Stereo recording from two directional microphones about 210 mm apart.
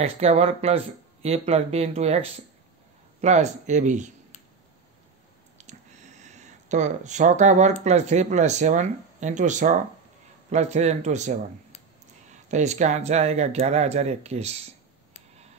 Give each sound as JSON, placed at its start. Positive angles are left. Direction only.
{"t": 0.0, "sound": "speech", "side_deg": -30}
{"t": 5.6, "sound": "a sound", "side_deg": -35}
{"t": 7.8, "sound": "speech", "side_deg": -30}
{"t": 12.4, "sound": "speech", "side_deg": -35}